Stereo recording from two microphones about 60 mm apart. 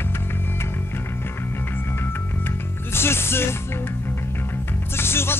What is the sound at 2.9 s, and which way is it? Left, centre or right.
Music, left.